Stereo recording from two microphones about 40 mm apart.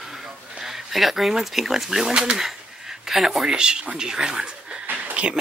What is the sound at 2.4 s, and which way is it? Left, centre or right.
Speech, centre.